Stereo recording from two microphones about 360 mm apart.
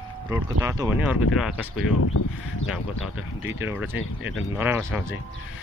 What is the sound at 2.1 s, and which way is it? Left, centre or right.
Speech, left.